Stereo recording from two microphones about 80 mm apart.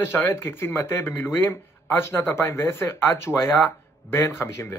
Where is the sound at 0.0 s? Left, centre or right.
Left.